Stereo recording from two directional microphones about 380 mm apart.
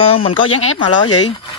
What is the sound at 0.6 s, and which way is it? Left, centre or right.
Speech, left.